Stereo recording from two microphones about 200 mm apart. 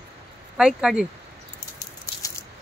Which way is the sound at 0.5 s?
5° right (ahead or behind).